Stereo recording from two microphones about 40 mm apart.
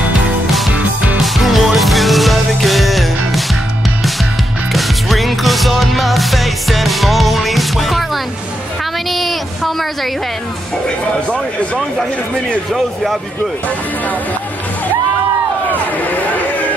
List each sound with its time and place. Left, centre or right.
1.2 s music: centre
4.7 s music: centre
9.1 s child singing: centre
11.2 s a sound: left
12.7 s speech: centre